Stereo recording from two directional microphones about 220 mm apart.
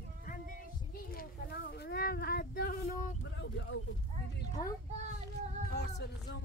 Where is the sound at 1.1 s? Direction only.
45° left (ahead or behind).